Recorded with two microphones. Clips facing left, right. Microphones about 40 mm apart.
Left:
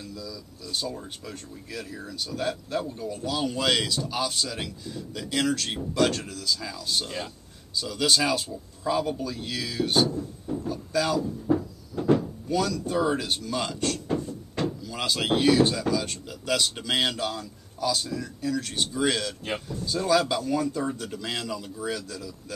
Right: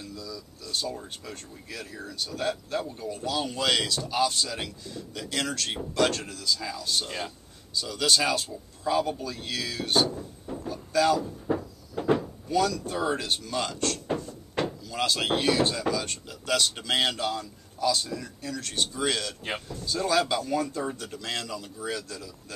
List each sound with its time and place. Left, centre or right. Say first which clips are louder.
0.0 s speech: left 1 dB; centre
10.1 s music: left 5 dB; centre
10.7 s speech: right 3 dB; centre
11.1 s music: left 4 dB; centre
12.2 s speech: right 1 dB; centre